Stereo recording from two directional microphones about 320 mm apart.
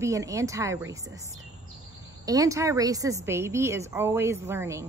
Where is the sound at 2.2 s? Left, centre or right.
Centre.